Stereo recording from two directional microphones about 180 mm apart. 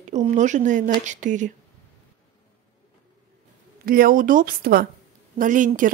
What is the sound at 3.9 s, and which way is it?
A woman's voice, 50° right (ahead or behind).